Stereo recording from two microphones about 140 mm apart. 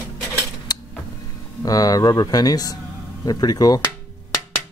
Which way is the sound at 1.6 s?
25° left (ahead or behind).